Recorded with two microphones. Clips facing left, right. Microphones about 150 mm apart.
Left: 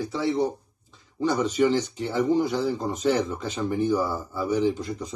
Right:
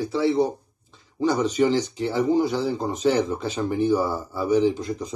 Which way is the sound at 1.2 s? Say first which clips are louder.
Right 2 dB; 10° right (ahead or behind).